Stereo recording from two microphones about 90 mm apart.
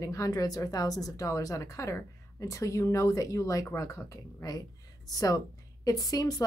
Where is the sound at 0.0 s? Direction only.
40° left (ahead or behind).